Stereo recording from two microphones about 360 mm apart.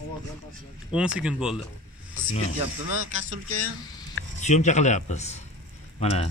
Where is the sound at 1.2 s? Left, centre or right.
Centre.